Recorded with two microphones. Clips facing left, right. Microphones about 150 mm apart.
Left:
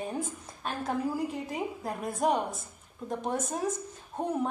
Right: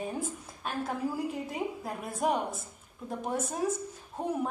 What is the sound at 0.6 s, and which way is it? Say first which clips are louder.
Speech: even; 5° right (ahead or behind).